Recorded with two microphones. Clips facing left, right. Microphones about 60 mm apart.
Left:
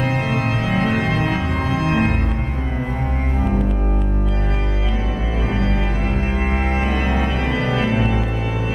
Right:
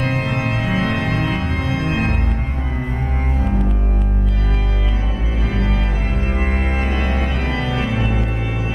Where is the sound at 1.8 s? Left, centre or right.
Left.